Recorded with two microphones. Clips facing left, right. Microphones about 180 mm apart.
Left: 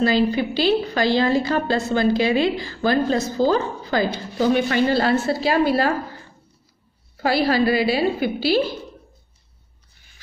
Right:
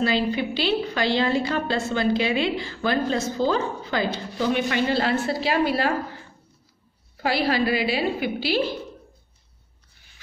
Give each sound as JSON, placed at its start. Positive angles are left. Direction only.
{"t": 0.0, "sound": "a woman's voice", "side_deg": 40}
{"t": 7.2, "sound": "a woman's voice", "side_deg": 40}